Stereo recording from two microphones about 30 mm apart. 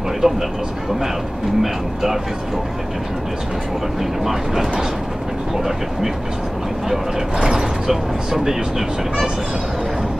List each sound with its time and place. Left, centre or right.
0.2 s speech: centre
4.2 s speech: centre
7.3 s speech: centre